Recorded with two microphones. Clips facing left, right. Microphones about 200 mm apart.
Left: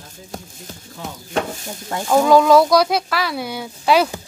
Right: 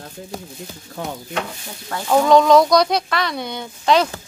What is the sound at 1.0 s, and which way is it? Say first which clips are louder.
Speech: right 4 dB; 50° right (ahead or behind).